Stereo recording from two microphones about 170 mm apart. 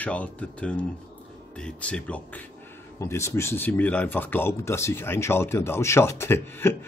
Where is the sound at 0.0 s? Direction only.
10° left (ahead or behind).